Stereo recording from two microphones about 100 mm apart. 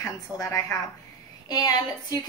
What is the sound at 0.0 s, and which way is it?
A woman's voice, 30° left (ahead or behind).